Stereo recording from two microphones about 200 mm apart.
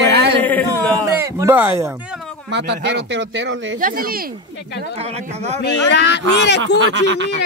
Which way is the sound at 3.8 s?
45° right (ahead or behind).